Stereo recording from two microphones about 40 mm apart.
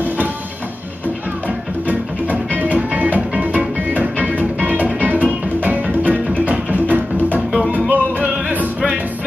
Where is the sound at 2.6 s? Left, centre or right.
Right.